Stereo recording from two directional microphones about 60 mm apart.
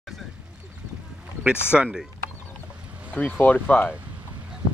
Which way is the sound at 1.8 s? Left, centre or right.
Centre.